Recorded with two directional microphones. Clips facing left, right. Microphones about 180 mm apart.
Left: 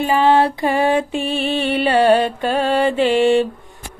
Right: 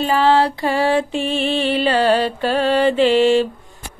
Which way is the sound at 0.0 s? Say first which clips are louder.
Left 1 dB; 15° left (ahead or behind).